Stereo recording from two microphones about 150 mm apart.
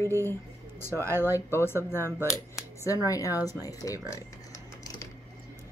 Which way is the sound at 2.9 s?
20° left (ahead or behind).